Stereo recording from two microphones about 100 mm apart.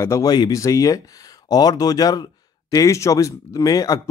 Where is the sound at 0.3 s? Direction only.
45° left (ahead or behind).